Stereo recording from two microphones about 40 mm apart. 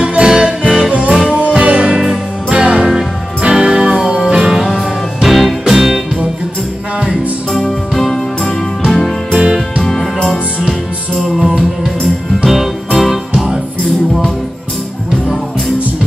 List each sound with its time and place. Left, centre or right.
0.0 s music: right
1.9 s music: centre
2.5 s music: right
4.7 s music: centre
7.5 s music: centre
9.3 s music: centre
9.8 s music: centre
11.2 s music: centre